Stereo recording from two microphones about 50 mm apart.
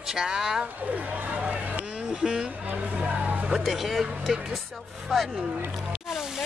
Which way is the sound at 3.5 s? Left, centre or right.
Centre.